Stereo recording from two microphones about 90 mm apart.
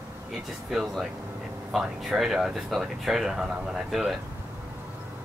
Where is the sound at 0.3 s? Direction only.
Centre (ahead or behind).